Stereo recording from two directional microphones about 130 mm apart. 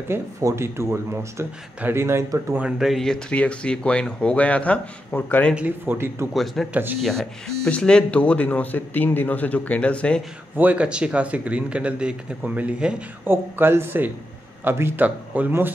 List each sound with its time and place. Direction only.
0.1 s speech: 20° right (ahead or behind); by 5.5 s 10° left (ahead or behind)
5.5 s speech: 10° right (ahead or behind)
6.3 s speech: centre (ahead or behind)
6.7 s speech: 15° right (ahead or behind)
7.0 s speech: 5° left (ahead or behind)
10.5 s speech: 10° right (ahead or behind)